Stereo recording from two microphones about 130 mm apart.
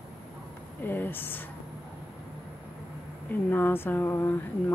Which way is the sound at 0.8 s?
15° left (ahead or behind).